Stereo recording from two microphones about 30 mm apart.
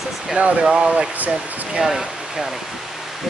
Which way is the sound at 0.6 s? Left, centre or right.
Right.